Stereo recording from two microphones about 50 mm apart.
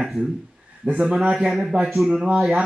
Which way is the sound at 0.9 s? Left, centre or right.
Centre.